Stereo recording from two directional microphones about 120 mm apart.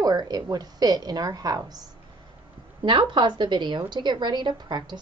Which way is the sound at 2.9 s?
40° right (ahead or behind).